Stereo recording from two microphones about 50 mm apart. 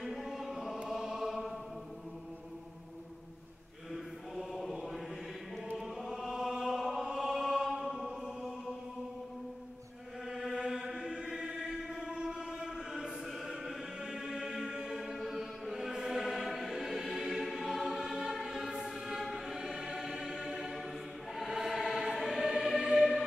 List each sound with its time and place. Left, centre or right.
0.0 s chant: centre
0.8 s choir: centre
3.9 s mantra: centre
5.8 s chant: centre
10.3 s chant: centre
12.2 s a sound: centre
12.6 s choir: centre